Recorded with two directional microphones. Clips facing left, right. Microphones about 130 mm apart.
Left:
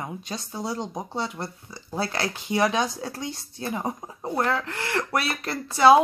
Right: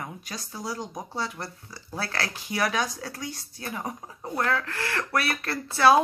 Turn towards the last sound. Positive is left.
turn(degrees=20)  # may be behind; listen again after turning